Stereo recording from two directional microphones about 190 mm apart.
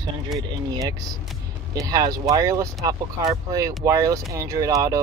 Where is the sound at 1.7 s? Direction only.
20° right (ahead or behind).